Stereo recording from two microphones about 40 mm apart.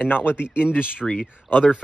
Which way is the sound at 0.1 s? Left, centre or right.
Left.